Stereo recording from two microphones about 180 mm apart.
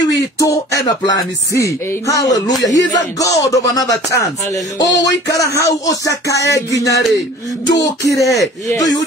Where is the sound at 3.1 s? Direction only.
20° left (ahead or behind).